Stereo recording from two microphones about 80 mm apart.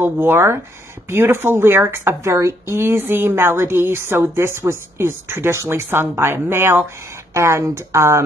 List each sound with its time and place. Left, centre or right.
0.0 s a woman's voice: right